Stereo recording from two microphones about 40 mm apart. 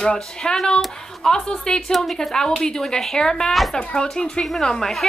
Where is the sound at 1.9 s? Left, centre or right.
Centre.